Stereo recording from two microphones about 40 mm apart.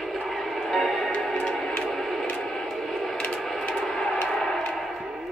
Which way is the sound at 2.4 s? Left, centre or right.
Centre.